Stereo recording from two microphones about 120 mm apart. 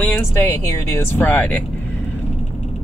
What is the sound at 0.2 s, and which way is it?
Speech, 20° left (ahead or behind).